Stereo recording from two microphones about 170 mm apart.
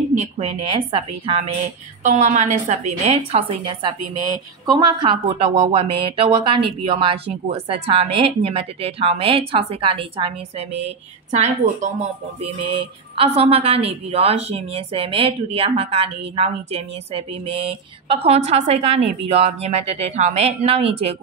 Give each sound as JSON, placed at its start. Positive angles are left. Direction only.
{"t": 0.2, "sound": "a woman's voice", "side_deg": -35}
{"t": 2.0, "sound": "a woman's voice", "side_deg": -45}